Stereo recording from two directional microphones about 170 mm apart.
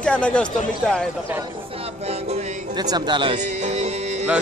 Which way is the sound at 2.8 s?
25° right (ahead or behind).